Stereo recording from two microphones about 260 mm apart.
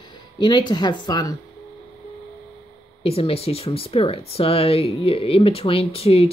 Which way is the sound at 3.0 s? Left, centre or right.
Left.